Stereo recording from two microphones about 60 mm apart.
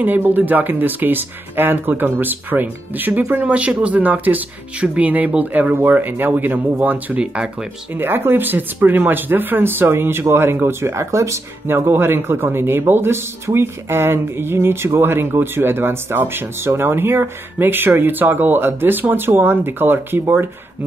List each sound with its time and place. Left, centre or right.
0.0 s speech: right
7.9 s speech: right
11.6 s speech: right